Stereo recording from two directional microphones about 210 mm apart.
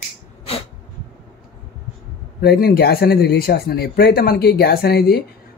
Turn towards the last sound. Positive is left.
turn(degrees=45)  # may be behind; listen again after turning